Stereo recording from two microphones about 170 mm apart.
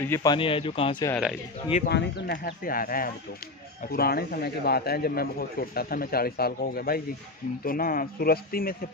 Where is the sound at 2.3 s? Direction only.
55° left (ahead or behind).